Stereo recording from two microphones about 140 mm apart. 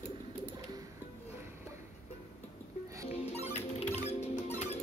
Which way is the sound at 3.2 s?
50° left (ahead or behind).